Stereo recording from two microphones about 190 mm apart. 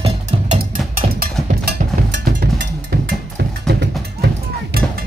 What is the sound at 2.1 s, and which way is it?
Music, 60° right (ahead or behind).